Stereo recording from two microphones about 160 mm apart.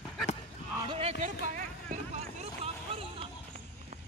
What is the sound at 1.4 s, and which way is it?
Vehicle, 55° right (ahead or behind).